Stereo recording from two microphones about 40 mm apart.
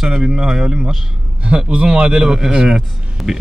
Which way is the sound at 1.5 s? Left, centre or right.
Right.